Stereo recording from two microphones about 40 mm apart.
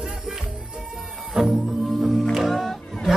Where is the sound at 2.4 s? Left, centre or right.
Centre.